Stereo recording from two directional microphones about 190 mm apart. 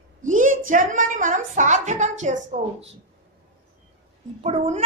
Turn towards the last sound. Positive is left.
turn(degrees=-35)  # may be behind; listen again after turning